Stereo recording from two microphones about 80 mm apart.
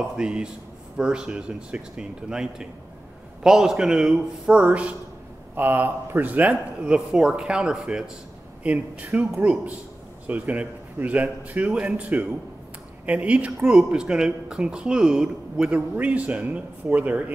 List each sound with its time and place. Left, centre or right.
0.2 s speech: centre